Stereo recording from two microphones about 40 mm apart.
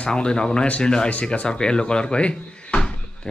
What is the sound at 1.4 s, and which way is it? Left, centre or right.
Speech, left.